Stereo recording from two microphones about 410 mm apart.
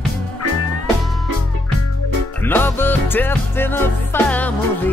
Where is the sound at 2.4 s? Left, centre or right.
Centre.